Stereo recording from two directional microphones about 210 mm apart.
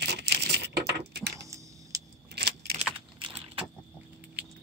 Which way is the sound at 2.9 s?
25° right (ahead or behind).